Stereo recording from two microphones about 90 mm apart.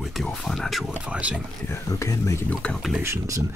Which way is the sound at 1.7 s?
35° left (ahead or behind).